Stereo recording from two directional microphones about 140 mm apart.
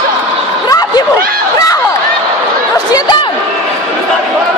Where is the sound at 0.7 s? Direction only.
25° left (ahead or behind).